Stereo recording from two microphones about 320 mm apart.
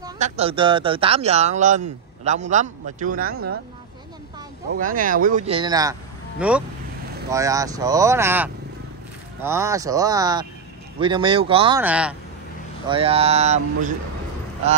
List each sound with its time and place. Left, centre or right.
0.0 s speech: centre
4.7 s speech: right
11.8 s speech: centre
12.9 s speech: centre